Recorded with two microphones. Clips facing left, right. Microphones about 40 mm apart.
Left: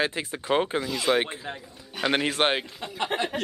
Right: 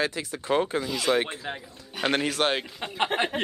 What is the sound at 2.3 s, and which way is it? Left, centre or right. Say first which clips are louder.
Speech: left 1 dB; left.